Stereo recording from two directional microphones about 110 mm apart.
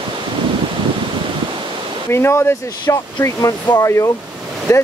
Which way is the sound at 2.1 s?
25° left (ahead or behind).